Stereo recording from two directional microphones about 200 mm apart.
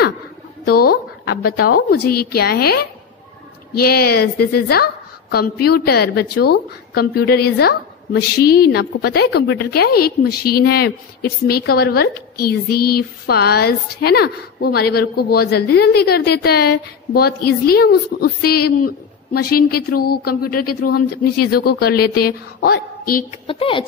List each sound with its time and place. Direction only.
0.7 s a woman's voice: 50° left (ahead or behind)
23.4 s a woman's voice: 25° left (ahead or behind)